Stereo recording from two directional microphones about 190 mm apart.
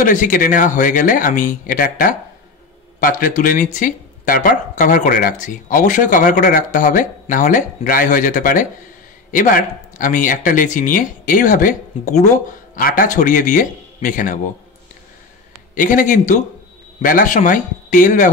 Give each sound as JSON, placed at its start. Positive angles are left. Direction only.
{"t": 0.0, "sound": "speech", "side_deg": 45}
{"t": 15.7, "sound": "speech", "side_deg": 45}